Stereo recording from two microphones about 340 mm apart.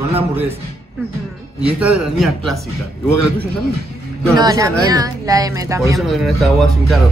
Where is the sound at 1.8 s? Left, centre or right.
Centre.